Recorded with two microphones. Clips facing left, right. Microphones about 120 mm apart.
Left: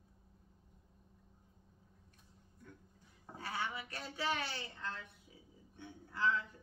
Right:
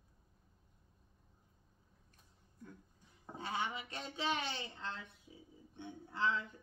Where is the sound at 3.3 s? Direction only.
20° right (ahead or behind).